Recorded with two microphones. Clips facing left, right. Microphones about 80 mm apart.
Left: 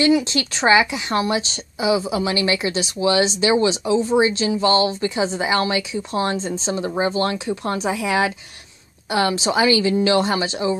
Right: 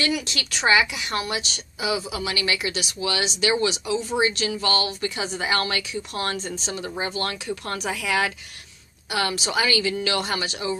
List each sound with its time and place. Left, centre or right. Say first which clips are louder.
0.0 s a woman's voice: left 9 dB; left